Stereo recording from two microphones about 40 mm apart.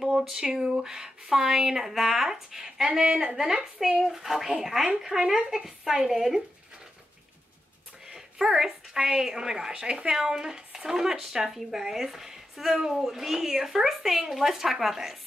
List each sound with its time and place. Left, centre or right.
0.3 s a sound: centre
0.7 s a woman's voice: centre
8.1 s a woman's voice: centre